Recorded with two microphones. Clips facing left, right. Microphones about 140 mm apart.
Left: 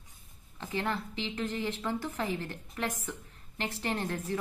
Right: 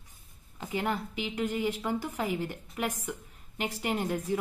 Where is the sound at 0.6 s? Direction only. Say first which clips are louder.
Right 2 dB; 15° right (ahead or behind).